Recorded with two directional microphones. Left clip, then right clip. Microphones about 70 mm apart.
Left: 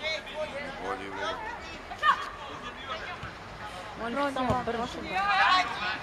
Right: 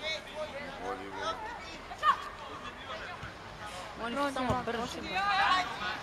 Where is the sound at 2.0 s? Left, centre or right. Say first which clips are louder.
Left 3 dB; centre.